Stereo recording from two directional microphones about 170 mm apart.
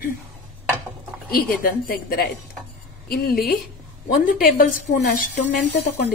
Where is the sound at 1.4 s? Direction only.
60° left (ahead or behind).